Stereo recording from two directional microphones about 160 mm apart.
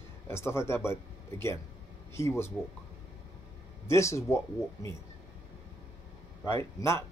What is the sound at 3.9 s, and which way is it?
Speech, 20° left (ahead or behind).